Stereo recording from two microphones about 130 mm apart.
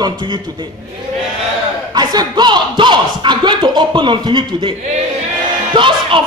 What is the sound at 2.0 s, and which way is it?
Speech, 30° right (ahead or behind).